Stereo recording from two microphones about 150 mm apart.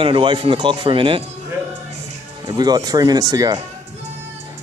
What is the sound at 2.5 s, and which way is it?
Speech, 25° right (ahead or behind).